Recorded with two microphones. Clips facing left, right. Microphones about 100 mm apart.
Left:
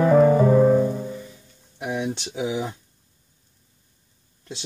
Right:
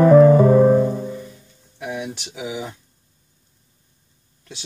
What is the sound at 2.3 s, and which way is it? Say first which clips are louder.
Speech: left 3 dB; 35° left (ahead or behind).